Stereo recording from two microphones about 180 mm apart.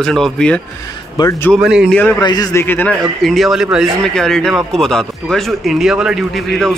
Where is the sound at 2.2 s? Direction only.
20° left (ahead or behind).